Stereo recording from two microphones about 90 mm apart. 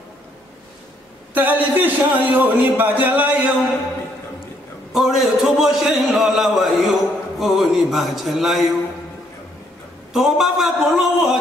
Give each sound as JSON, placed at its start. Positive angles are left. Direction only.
{"t": 1.3, "sound": "a man's voice", "side_deg": -20}
{"t": 4.9, "sound": "a man's voice", "side_deg": -5}
{"t": 10.1, "sound": "a man's voice", "side_deg": -5}